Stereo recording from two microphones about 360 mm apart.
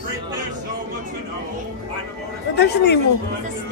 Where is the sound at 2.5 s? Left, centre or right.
Left.